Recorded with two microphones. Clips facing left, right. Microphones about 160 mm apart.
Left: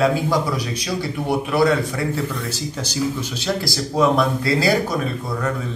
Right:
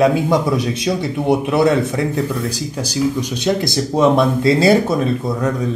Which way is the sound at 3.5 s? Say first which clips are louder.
Right 6 dB; 20° right (ahead or behind).